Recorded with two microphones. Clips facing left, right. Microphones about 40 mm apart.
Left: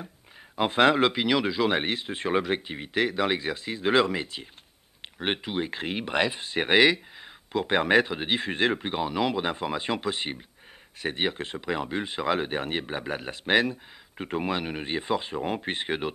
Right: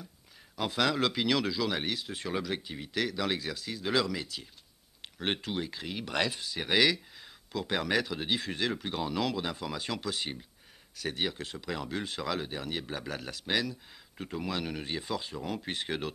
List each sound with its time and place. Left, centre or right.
0.6 s speech: left
5.7 s speech: left
6.1 s speech: left
6.4 s speech: left